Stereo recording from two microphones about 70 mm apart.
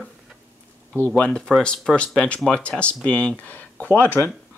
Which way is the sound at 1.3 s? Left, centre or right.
Centre.